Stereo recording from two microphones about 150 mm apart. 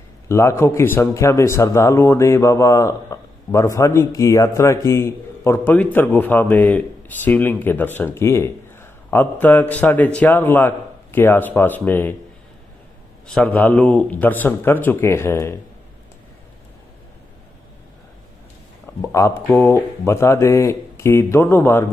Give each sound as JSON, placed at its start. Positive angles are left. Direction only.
{"t": 0.3, "sound": "a man's voice", "side_deg": 20}
{"t": 13.3, "sound": "a man's voice", "side_deg": 10}
{"t": 18.9, "sound": "a man's voice", "side_deg": 15}